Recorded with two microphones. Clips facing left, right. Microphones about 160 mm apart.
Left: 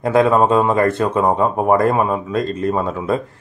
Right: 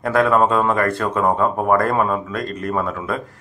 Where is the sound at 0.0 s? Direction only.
20° left (ahead or behind).